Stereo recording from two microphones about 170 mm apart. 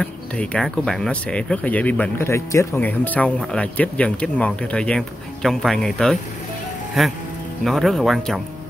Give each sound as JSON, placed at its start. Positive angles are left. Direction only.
{"t": 0.0, "sound": "speech", "side_deg": 5}